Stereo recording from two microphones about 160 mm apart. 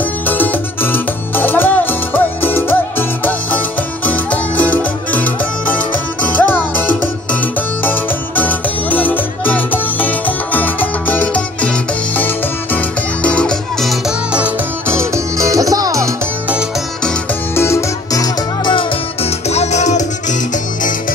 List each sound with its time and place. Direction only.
0.3 s music: 10° left (ahead or behind)
12.7 s music: 5° left (ahead or behind); by 16.1 s 20° right (ahead or behind)
17.6 s music: 15° left (ahead or behind)
19.5 s music: 45° left (ahead or behind)